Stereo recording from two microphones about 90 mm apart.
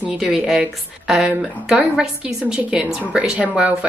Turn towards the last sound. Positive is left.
turn(degrees=-10)  # may be behind; listen again after turning